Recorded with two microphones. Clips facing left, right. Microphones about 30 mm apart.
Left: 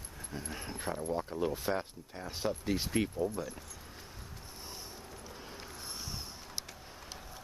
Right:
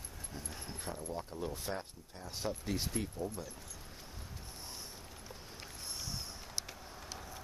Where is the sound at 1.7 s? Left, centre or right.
Left.